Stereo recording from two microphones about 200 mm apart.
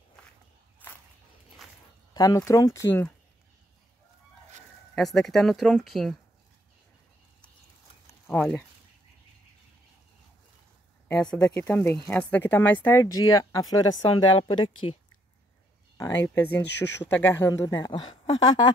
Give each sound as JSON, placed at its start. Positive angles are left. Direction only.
{"t": 1.6, "sound": "walk", "side_deg": 0}
{"t": 2.1, "sound": "speech", "side_deg": 15}
{"t": 4.9, "sound": "speech", "side_deg": 0}
{"t": 8.3, "sound": "speech", "side_deg": 5}
{"t": 11.3, "sound": "speech", "side_deg": 5}
{"t": 16.3, "sound": "speech", "side_deg": 10}